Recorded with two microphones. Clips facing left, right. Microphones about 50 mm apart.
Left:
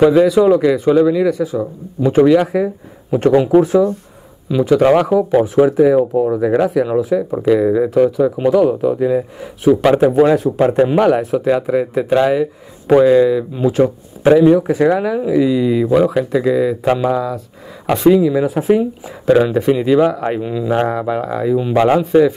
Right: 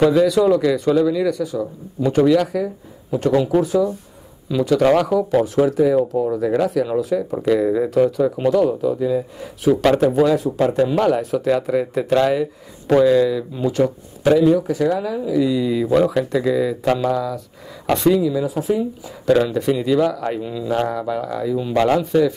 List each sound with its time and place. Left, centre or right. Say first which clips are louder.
0.0 s speech: left 4 dB; centre
3.6 s speech: left 5 dB; left
4.5 s speech: left 4 dB; centre
8.6 s speech: left 4 dB; left
9.4 s speech: left 4 dB; centre
10.2 s speech: left 4 dB; left
11.4 s speech: left 3 dB; centre; by 15.4 s left
15.4 s speech: left 4 dB; centre
17.8 s speech: left 5 dB; centre
18.2 s speech: left 5 dB; left
19.2 s speech: left 4 dB; left